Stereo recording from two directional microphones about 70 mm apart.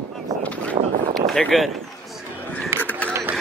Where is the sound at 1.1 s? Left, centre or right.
Centre.